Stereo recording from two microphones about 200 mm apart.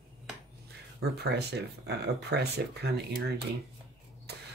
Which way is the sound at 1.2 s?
55° right (ahead or behind).